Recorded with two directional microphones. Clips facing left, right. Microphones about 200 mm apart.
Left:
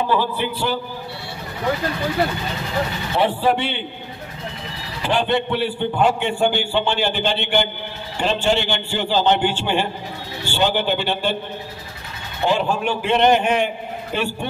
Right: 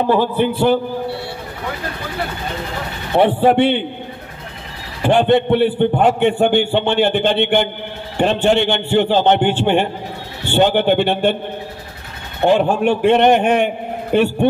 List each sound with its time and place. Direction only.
0.0 s a man's voice: 55° right (ahead or behind)
3.3 s a man's voice: 55° right (ahead or behind)
5.0 s a man's voice: 55° right (ahead or behind)
12.4 s a man's voice: 55° right (ahead or behind)